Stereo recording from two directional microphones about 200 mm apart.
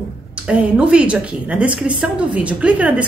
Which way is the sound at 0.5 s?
5° right (ahead or behind).